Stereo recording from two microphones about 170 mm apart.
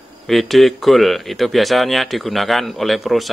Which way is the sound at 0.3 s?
Centre (ahead or behind).